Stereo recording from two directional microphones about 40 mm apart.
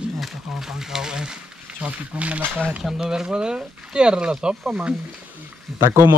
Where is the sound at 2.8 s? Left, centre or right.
Centre.